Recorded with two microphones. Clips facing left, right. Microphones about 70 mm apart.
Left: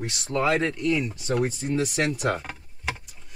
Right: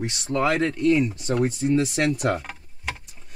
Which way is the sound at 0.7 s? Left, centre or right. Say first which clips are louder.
Right 5 dB; right.